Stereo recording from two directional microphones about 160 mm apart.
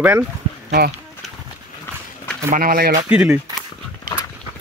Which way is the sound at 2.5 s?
65° right (ahead or behind).